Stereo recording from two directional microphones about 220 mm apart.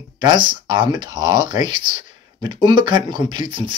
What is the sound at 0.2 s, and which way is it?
Speech, 20° right (ahead or behind).